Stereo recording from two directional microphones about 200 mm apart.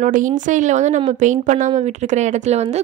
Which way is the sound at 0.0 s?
40° right (ahead or behind).